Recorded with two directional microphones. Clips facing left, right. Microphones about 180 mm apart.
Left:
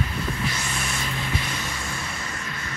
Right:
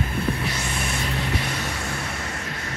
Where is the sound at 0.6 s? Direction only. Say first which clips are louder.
Right 2 dB; 60° right (ahead or behind).